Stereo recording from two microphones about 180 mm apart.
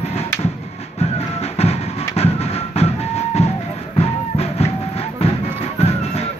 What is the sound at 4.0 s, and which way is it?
Music, 35° left (ahead or behind).